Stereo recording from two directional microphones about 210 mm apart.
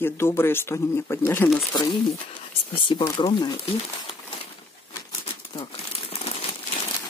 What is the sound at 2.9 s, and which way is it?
Speech, 20° left (ahead or behind).